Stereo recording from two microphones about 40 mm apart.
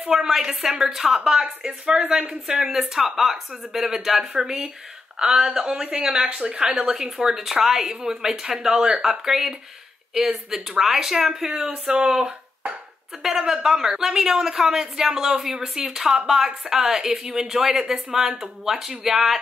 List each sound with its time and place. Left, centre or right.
0.1 s speech: centre
2.7 s speech: centre
13.4 s speech: centre